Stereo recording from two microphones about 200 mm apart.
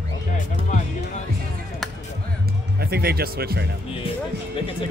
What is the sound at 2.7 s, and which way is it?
Speech, 50° right (ahead or behind).